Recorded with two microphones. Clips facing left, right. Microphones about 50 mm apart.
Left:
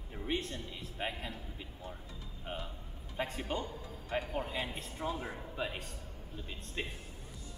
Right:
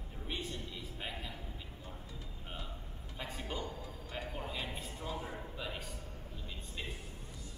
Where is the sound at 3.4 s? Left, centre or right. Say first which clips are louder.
Left 3 dB; left.